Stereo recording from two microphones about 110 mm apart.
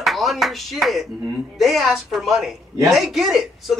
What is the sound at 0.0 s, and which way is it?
Speech, centre (ahead or behind).